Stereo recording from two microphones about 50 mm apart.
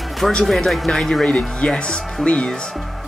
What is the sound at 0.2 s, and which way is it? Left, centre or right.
Speech, centre.